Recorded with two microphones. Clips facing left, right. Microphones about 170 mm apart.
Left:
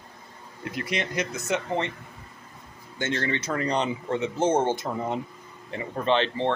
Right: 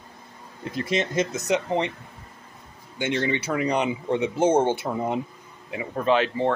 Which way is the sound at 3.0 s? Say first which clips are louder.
Right 3 dB; 15° right (ahead or behind).